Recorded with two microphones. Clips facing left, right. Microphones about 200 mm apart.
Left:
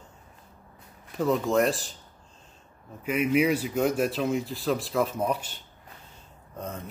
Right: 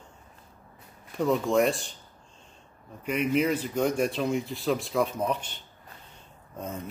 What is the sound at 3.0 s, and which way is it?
A man's voice, 5° left (ahead or behind).